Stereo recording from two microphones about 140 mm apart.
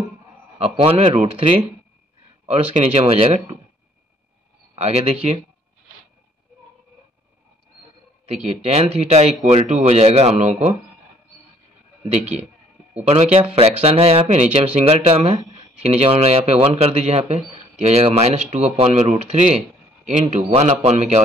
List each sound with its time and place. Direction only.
0.6 s speech: 45° right (ahead or behind)
4.7 s speech: 45° right (ahead or behind)
8.3 s speech: 50° right (ahead or behind)
12.0 s a man's voice: 50° right (ahead or behind)